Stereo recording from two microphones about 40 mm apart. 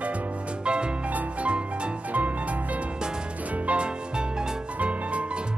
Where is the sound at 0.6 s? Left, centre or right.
Right.